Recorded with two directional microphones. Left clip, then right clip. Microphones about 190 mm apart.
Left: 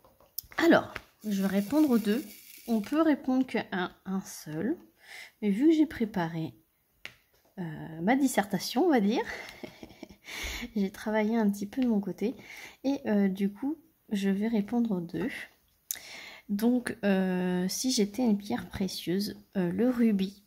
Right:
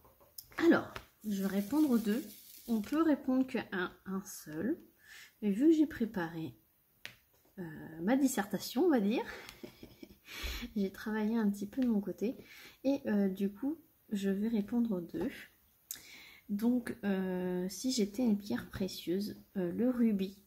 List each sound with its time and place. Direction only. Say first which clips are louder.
0.4 s a sound: left 6 dB; 55° left (ahead or behind)
1.3 s speech: left 6 dB; 55° left (ahead or behind)
7.0 s finger snapping: left 4 dB; 10° left (ahead or behind)
7.5 s speech: left 5 dB; 50° left (ahead or behind)